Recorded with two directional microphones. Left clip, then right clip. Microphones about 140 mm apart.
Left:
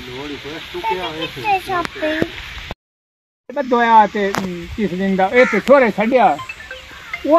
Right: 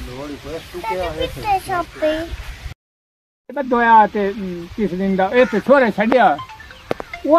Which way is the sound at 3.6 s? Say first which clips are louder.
Even; 15° left (ahead or behind).